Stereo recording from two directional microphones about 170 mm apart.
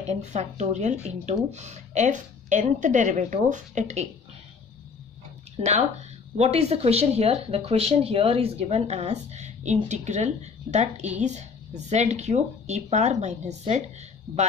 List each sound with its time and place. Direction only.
0.1 s speech: 40° right (ahead or behind)
5.6 s speech: 40° right (ahead or behind)